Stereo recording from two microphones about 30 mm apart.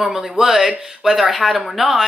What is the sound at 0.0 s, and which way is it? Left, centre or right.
A woman's voice, centre.